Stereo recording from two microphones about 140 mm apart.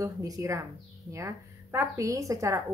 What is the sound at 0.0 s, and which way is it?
A woman's voice, 25° right (ahead or behind).